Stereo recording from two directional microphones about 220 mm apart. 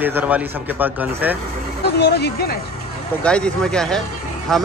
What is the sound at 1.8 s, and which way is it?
Speech, 45° left (ahead or behind).